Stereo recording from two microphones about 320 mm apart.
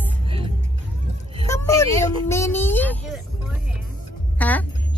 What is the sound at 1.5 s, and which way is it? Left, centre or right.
Speech, centre.